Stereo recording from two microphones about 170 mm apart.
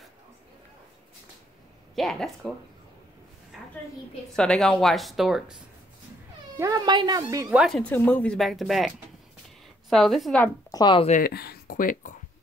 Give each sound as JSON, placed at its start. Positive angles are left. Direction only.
{"t": 2.0, "sound": "speech", "side_deg": 0}
{"t": 3.5, "sound": "a sound", "side_deg": 0}
{"t": 4.4, "sound": "speech", "side_deg": 5}
{"t": 6.5, "sound": "speech", "side_deg": -20}
{"t": 7.4, "sound": "speech", "side_deg": 0}
{"t": 10.7, "sound": "speech", "side_deg": 25}
{"t": 11.1, "sound": "a sound", "side_deg": 55}